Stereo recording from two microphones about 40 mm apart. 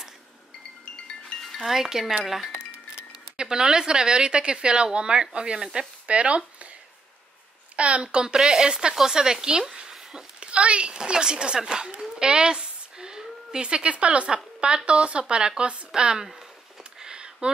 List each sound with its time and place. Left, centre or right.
1.6 s wind chime: centre
2.2 s speech: centre
3.3 s a woman's voice: centre
5.6 s wind chime: centre
6.0 s speech: right
7.7 s a woman's voice: right; by 10.2 s centre
10.4 s a sound: right
10.9 s a woman's voice: right
12.2 s a sound: right
14.9 s a woman's voice: right
17.0 s a sound: right